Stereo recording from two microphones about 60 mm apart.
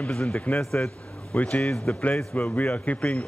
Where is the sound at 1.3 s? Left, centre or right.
Left.